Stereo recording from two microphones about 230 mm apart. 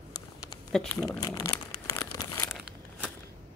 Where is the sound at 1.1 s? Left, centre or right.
Centre.